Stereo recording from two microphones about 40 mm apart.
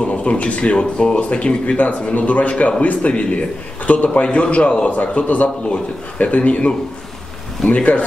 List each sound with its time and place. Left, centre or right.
0.1 s a man's voice: left
7.7 s a man's voice: left